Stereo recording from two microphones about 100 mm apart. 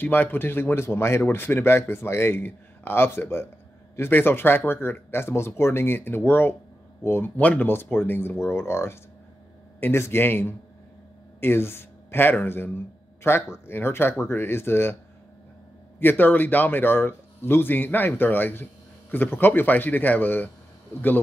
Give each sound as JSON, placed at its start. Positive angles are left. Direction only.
{"t": 0.0, "sound": "speech", "side_deg": 20}
{"t": 16.0, "sound": "speech", "side_deg": 20}